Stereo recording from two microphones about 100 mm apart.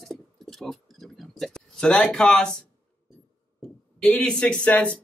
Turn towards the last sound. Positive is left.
turn(degrees=10)  # may be behind; listen again after turning